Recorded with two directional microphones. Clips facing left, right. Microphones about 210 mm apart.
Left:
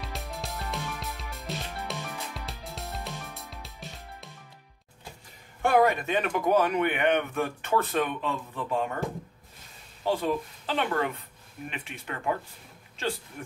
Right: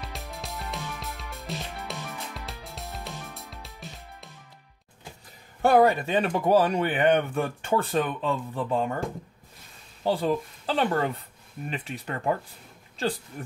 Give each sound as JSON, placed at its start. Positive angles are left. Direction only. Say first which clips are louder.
{"t": 0.0, "sound": "music", "louder": "left 1 dB", "side_deg": 0}
{"t": 5.6, "sound": "speech", "louder": "right 3 dB", "side_deg": -35}
{"t": 10.0, "sound": "speech", "louder": "right 2 dB", "side_deg": -35}